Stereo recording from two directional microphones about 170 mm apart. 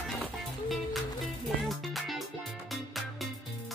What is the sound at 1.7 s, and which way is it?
Music, centre (ahead or behind).